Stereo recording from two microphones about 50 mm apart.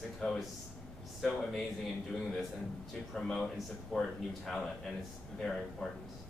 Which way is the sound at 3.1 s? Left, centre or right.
Centre.